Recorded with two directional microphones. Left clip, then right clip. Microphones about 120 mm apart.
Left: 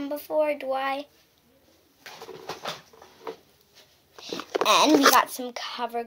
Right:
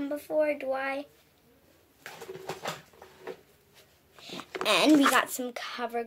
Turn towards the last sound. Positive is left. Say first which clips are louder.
# left 3 dB
turn(degrees=-30)  # may be behind; listen again after turning